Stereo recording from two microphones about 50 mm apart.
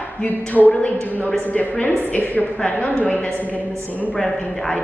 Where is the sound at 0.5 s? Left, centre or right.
Left.